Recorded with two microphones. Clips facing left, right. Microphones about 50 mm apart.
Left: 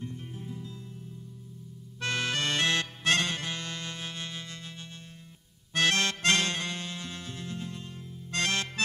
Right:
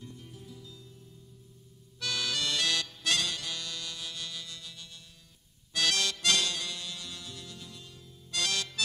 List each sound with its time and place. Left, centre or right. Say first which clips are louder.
0.0 s music: left 7 dB; left
2.0 s music: left 3 dB; left
5.7 s accordion: left 4 dB; left